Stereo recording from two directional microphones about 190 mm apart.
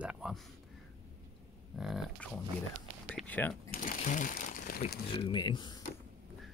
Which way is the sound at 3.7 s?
40° left (ahead or behind).